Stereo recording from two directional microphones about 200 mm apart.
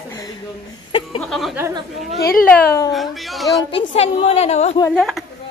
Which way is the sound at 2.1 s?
50° left (ahead or behind).